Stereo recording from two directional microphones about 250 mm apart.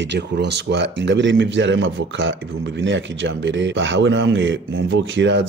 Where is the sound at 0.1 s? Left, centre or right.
Right.